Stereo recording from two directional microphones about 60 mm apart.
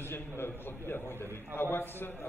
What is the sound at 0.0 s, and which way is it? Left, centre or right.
A man's voice, left.